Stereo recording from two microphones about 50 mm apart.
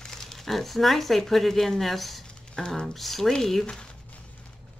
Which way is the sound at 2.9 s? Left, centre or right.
Centre.